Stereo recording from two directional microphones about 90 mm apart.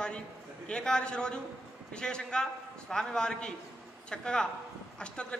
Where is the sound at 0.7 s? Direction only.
10° left (ahead or behind).